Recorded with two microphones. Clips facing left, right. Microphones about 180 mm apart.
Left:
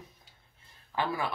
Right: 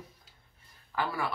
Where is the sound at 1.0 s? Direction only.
20° left (ahead or behind).